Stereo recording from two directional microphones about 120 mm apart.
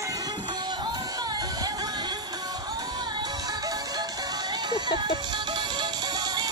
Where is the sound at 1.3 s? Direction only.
35° right (ahead or behind).